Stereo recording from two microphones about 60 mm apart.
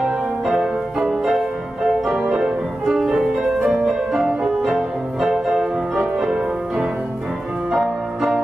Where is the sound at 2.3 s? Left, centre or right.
Centre.